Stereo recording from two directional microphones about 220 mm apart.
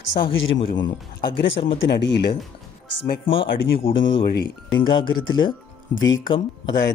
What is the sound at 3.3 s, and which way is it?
Speech, 60° left (ahead or behind).